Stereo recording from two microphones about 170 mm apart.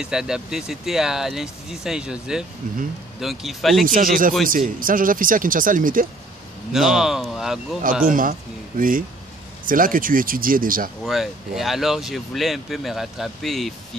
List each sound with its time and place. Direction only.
0.0 s speech: 5° right (ahead or behind)
3.8 s speech: 55° right (ahead or behind)
6.7 s speech: 5° right (ahead or behind)
8.0 s speech: 55° right (ahead or behind)
11.1 s speech: centre (ahead or behind)